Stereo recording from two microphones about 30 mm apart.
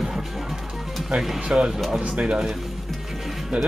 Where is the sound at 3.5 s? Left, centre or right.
Right.